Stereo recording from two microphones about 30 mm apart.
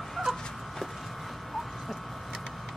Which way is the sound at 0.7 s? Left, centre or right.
Centre.